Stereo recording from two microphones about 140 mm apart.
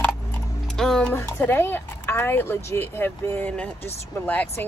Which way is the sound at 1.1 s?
20° left (ahead or behind).